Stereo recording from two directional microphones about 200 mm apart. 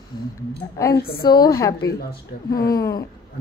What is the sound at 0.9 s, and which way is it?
Speech, 50° left (ahead or behind).